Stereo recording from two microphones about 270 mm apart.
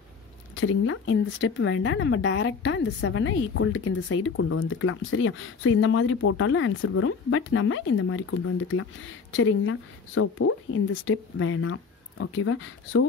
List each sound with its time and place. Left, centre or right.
0.6 s speech: left